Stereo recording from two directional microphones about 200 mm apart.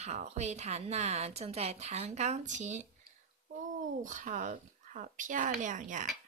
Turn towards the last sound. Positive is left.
turn(degrees=-40)  # may be behind; listen again after turning